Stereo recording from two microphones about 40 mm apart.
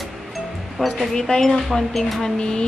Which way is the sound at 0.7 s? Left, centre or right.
Centre.